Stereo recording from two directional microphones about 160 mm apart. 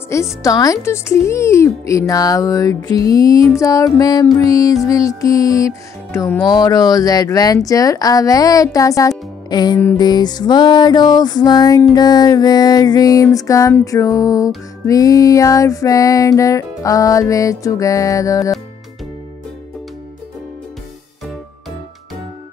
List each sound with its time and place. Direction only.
0.1 s speech: 20° left (ahead or behind)